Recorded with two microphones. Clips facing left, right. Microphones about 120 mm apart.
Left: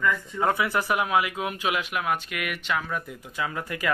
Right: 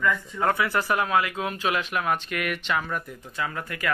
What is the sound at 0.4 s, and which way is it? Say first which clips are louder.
Speech: even; 15° left (ahead or behind).